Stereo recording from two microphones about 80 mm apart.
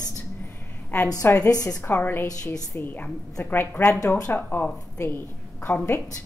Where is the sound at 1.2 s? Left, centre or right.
Left.